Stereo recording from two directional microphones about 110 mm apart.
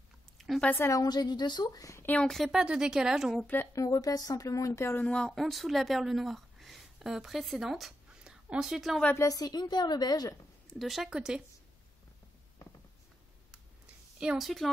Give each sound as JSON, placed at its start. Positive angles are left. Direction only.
{"t": 0.6, "sound": "a woman's voice", "side_deg": 15}
{"t": 0.8, "sound": "speech", "side_deg": 35}
{"t": 2.0, "sound": "speech", "side_deg": 10}
{"t": 3.7, "sound": "speech", "side_deg": 35}
{"t": 5.0, "sound": "speech", "side_deg": 5}
{"t": 9.1, "sound": "speech", "side_deg": 30}
{"t": 10.8, "sound": "speech", "side_deg": 0}
{"t": 14.2, "sound": "speech", "side_deg": -5}